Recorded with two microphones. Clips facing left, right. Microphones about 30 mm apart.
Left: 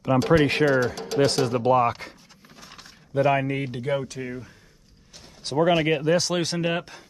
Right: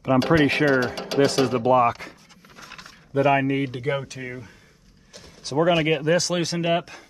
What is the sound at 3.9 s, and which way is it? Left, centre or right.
Speech, centre.